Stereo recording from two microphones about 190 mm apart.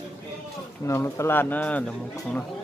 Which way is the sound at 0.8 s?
15° left (ahead or behind).